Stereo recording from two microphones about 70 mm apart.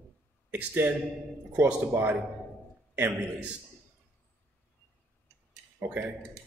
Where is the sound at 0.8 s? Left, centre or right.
Right.